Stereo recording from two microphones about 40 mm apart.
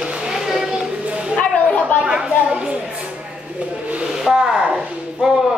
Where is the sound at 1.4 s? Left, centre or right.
Left.